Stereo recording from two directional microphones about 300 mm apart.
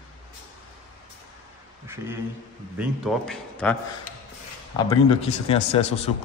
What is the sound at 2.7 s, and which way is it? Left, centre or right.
A man's voice, centre.